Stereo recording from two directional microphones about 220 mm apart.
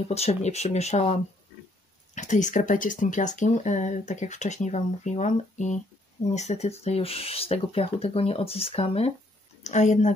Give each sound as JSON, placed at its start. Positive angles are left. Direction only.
{"t": 0.1, "sound": "speech", "side_deg": 30}